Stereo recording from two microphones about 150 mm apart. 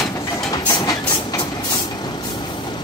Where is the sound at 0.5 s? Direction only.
25° left (ahead or behind).